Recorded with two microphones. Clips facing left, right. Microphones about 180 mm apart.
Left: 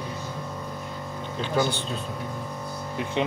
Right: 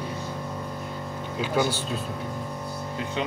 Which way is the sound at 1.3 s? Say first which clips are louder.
Even; 5° right (ahead or behind).